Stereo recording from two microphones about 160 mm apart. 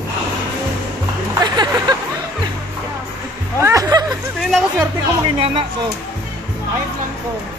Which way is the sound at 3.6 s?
20° right (ahead or behind).